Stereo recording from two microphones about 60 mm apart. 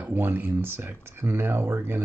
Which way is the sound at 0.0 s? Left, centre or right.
Right.